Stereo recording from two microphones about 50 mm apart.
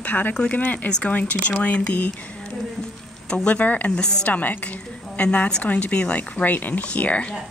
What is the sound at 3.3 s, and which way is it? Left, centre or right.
Speech, left.